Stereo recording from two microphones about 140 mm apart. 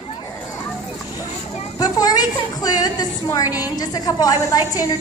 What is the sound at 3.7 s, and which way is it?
Speech, 25° left (ahead or behind).